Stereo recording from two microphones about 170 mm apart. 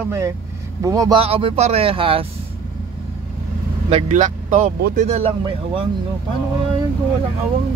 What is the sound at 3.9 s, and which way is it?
Speech, 45° right (ahead or behind).